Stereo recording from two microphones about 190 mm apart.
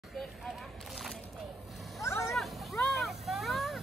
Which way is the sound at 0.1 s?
Centre (ahead or behind).